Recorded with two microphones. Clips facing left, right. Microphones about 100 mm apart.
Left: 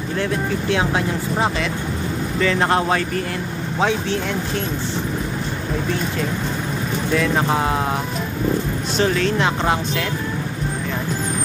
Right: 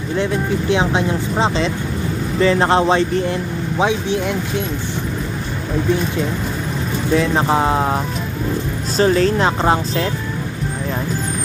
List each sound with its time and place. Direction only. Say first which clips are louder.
0.2 s speech: right 3 dB; 20° right (ahead or behind)
7.2 s speech: right 3 dB; 30° right (ahead or behind)
8.9 s speech: right 5 dB; 35° right (ahead or behind)